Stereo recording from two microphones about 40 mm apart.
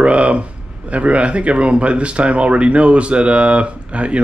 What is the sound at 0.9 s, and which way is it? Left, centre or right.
Speech, right.